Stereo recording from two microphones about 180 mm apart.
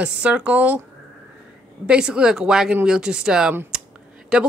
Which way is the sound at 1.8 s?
5° right (ahead or behind).